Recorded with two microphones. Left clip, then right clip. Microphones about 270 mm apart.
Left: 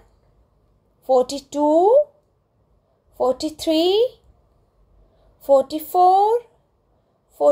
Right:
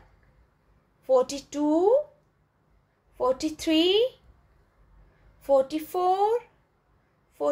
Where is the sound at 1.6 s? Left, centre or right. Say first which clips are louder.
Left 8 dB; centre.